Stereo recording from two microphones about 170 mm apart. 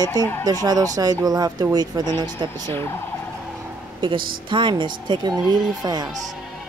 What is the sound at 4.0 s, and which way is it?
Speech, 30° right (ahead or behind).